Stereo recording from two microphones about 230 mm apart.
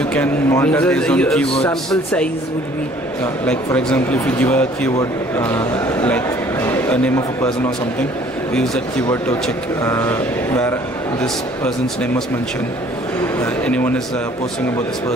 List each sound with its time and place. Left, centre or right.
0.1 s a man's voice: centre
3.4 s speech: centre
8.5 s a man's voice: centre
13.4 s speech: centre